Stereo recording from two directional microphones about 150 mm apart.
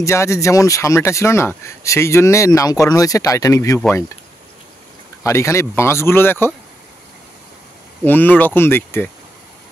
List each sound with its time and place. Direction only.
0.0 s speech: 20° left (ahead or behind)
5.2 s speech: 20° left (ahead or behind)
8.0 s speech: 10° left (ahead or behind)